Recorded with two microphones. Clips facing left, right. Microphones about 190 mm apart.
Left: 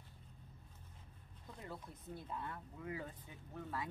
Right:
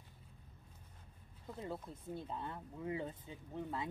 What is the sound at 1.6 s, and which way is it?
Speech, 25° right (ahead or behind).